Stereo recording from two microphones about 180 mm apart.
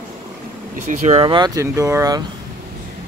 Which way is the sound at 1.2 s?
25° right (ahead or behind).